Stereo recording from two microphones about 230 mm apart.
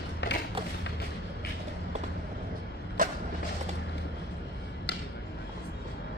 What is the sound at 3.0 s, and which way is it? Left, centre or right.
Vehicle, right.